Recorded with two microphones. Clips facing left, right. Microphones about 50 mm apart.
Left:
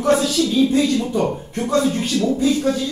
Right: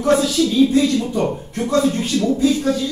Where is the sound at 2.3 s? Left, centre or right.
Left.